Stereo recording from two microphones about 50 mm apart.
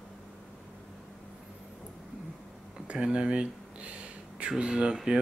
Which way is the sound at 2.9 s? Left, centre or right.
Centre.